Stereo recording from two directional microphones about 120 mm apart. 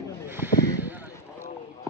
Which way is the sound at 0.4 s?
15° right (ahead or behind).